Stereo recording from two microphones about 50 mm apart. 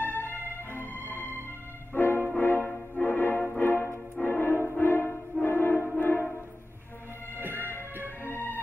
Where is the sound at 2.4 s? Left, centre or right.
Left.